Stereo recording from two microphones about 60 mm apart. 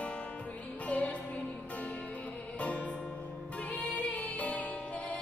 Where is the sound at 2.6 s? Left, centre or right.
Left.